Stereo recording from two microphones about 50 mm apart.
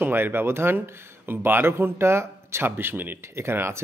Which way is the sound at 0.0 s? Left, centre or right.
Right.